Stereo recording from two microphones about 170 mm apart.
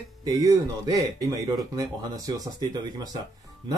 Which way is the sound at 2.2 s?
20° right (ahead or behind).